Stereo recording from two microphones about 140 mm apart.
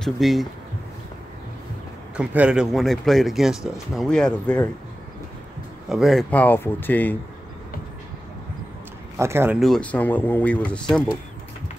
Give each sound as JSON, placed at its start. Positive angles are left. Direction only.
{"t": 0.0, "sound": "speech", "side_deg": 0}
{"t": 2.1, "sound": "speech", "side_deg": -10}
{"t": 5.9, "sound": "speech", "side_deg": -5}
{"t": 6.3, "sound": "speech", "side_deg": 15}
{"t": 9.1, "sound": "speech", "side_deg": -20}
{"t": 9.6, "sound": "speech", "side_deg": 5}